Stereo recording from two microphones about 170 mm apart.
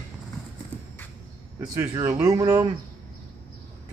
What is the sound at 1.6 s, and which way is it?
Speech, 15° right (ahead or behind).